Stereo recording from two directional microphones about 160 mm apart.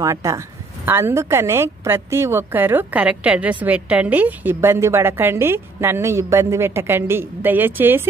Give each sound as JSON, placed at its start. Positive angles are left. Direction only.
{"t": 0.0, "sound": "a woman's voice", "side_deg": -20}